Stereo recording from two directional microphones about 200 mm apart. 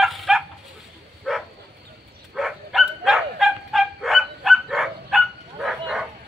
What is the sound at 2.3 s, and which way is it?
Bow-wow, centre (ahead or behind).